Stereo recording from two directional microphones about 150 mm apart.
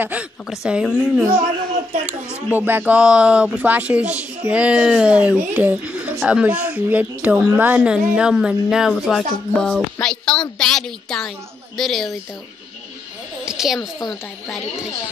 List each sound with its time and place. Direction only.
0.0 s speech: 10° right (ahead or behind)
2.3 s speech: 10° right (ahead or behind)
13.5 s a sound: 5° right (ahead or behind)
13.7 s a woman's voice: 25° left (ahead or behind)